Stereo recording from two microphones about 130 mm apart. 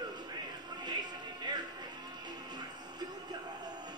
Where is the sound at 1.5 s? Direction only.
35° right (ahead or behind).